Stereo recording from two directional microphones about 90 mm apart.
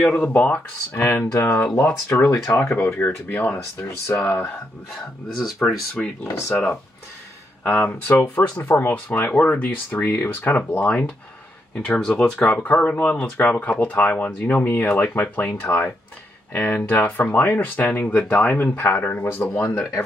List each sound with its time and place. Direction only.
0.0 s speech: 15° left (ahead or behind); by 5.8 s centre (ahead or behind)
6.2 s speech: 30° left (ahead or behind)
7.6 s speech: 20° left (ahead or behind)
8.6 s speech: 30° left (ahead or behind)
8.9 s speech: 20° left (ahead or behind)
12.4 s speech: 20° left (ahead or behind)